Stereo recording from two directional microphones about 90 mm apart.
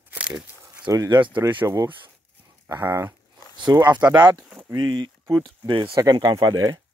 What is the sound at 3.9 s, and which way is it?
Speech, 15° right (ahead or behind).